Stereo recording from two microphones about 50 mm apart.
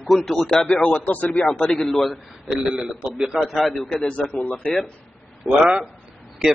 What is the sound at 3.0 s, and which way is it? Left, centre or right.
Speech, right.